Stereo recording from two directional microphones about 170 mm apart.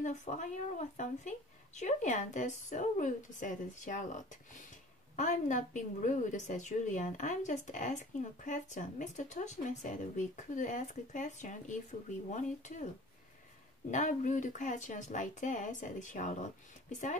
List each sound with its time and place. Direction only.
0.0 s a woman's voice: 45° left (ahead or behind)
13.8 s a woman's voice: 45° left (ahead or behind)